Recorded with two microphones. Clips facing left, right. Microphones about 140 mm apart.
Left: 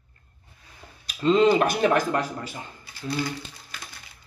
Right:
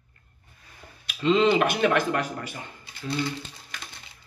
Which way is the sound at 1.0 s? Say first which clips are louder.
Left 2 dB; 40° left (ahead or behind).